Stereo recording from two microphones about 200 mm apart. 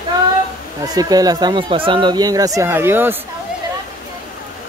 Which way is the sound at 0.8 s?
20° right (ahead or behind).